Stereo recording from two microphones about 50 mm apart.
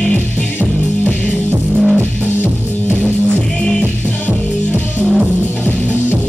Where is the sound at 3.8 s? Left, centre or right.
Right.